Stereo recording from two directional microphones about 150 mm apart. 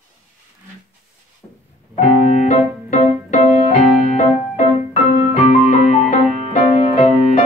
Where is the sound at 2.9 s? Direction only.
55° left (ahead or behind).